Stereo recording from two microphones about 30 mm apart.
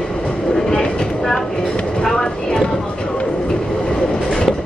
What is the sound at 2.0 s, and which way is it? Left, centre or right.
Vehicle, centre.